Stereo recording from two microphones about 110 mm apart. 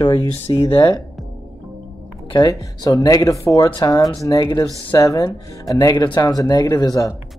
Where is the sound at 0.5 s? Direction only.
55° left (ahead or behind).